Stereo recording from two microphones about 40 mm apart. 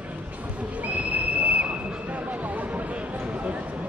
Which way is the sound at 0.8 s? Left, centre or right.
Right.